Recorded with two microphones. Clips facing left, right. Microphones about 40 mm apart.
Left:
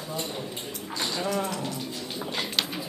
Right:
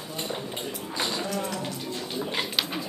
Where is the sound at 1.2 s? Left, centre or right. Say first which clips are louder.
Left 2 dB; centre.